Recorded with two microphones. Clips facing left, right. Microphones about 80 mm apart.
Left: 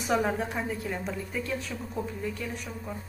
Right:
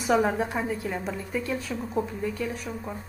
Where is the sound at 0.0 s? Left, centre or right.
Centre.